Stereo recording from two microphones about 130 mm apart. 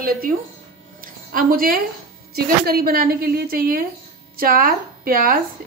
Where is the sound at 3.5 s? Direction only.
90° right.